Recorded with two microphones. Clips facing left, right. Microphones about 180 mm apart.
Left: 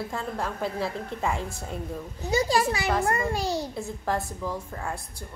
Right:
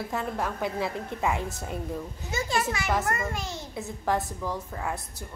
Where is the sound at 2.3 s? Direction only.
35° left (ahead or behind).